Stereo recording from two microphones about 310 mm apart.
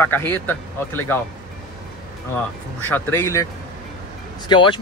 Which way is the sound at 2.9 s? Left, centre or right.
Centre.